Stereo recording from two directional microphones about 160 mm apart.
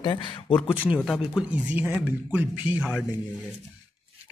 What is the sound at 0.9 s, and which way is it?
Speech, centre (ahead or behind).